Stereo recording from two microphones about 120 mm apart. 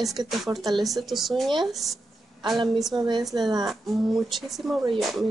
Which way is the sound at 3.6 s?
Centre (ahead or behind).